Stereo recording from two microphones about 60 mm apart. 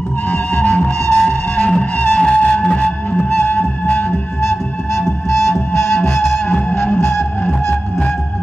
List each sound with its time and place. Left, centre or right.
0.3 s music: left
5.3 s music: left